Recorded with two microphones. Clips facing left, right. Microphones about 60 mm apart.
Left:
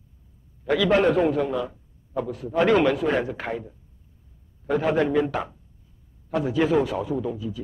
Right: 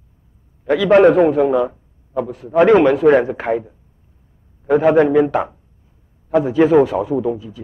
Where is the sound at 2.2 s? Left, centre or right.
Right.